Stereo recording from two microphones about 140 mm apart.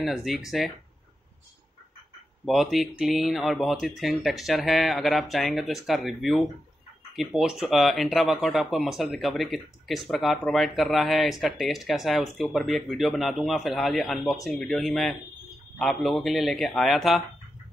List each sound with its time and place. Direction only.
0.0 s speech: centre (ahead or behind)
2.4 s speech: centre (ahead or behind)